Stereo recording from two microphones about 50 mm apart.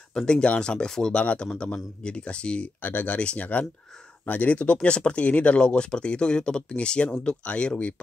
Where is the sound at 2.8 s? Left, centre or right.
Left.